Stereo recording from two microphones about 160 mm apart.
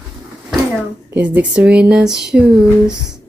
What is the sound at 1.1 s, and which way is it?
Speech, 10° right (ahead or behind).